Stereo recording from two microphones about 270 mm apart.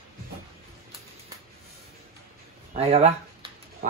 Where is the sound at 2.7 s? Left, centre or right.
Right.